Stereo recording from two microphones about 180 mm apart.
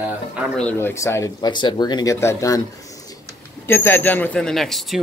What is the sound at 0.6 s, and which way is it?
Speech, 10° left (ahead or behind).